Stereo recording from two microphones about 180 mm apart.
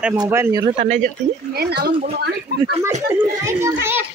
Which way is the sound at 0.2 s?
15° right (ahead or behind).